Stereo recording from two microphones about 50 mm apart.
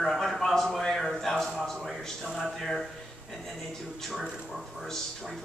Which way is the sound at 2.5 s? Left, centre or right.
Centre.